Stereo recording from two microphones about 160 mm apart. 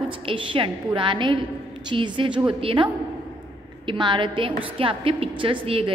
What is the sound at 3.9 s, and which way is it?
A woman's voice, 30° right (ahead or behind).